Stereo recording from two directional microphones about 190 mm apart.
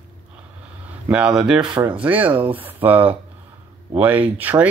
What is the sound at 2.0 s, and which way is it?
Speech, 10° right (ahead or behind).